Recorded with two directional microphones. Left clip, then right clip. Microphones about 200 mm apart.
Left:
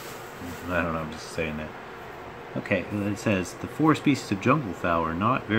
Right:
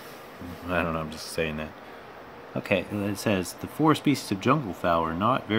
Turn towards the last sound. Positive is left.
turn(degrees=-30)  # may be behind; listen again after turning